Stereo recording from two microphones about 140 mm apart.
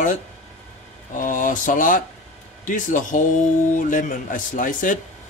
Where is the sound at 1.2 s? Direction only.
70° left (ahead or behind).